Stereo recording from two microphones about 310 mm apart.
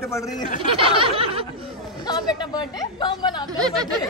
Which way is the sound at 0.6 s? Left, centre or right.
Centre.